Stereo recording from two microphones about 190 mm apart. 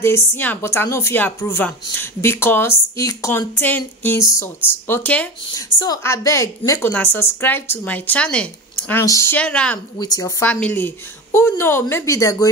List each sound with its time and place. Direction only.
0.3 s a woman's voice: 10° left (ahead or behind)
5.5 s a woman's voice: 20° left (ahead or behind)
9.9 s speech: 20° left (ahead or behind)
10.4 s a woman's voice: 5° left (ahead or behind)